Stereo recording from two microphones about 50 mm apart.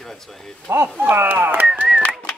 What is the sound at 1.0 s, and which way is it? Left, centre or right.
Speech, right.